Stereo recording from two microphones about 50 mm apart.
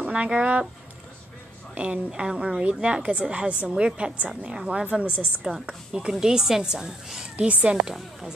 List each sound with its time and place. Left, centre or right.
0.0 s speech: right
1.8 s a woman's voice: right
7.3 s a woman's voice: right
7.8 s a woman's voice: centre